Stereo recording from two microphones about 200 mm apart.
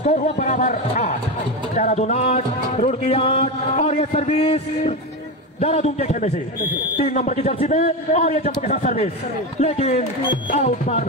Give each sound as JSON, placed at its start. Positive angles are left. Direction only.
{"t": 0.0, "sound": "a man's voice", "side_deg": 35}
{"t": 1.8, "sound": "music", "side_deg": 35}
{"t": 5.6, "sound": "a man's voice", "side_deg": 30}